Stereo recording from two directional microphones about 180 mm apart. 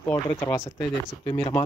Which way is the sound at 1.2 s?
30° left (ahead or behind).